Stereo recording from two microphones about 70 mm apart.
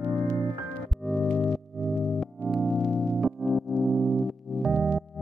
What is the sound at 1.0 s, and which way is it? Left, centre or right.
Music, centre.